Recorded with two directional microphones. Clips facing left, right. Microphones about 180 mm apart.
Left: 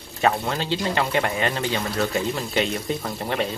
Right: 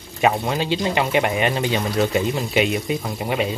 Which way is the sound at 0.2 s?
15° right (ahead or behind).